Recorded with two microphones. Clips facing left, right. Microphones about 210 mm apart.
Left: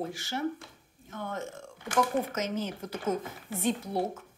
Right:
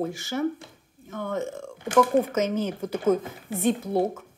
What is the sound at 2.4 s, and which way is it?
Speech, 60° right (ahead or behind).